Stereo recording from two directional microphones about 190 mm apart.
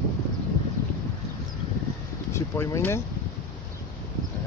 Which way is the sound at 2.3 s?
15° left (ahead or behind).